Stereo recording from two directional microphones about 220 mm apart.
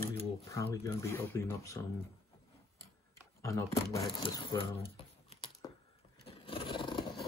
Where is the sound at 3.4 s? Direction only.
15° left (ahead or behind).